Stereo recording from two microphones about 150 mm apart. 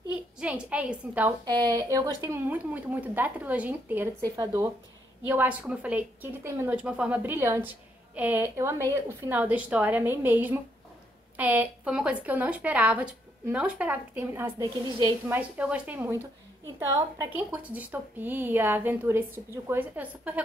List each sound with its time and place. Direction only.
0.4 s speech: 10° right (ahead or behind)
1.4 s speech: 30° right (ahead or behind)
2.5 s speech: 10° right (ahead or behind)
4.4 s speech: 20° right (ahead or behind)
5.3 s speech: 10° right (ahead or behind)
16.8 s speech: 25° right (ahead or behind)
17.5 s speech: 10° right (ahead or behind)